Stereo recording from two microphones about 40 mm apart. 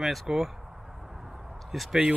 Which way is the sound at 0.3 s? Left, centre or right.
Right.